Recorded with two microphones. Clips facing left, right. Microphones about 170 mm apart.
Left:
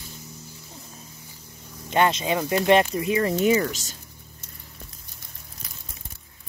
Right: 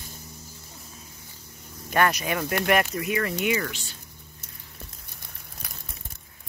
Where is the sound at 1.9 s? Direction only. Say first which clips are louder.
Left 2 dB; 25° left (ahead or behind).